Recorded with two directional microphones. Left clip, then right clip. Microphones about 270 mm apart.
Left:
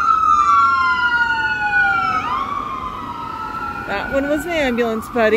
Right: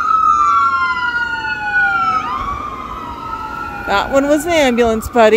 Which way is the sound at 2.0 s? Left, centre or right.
Right.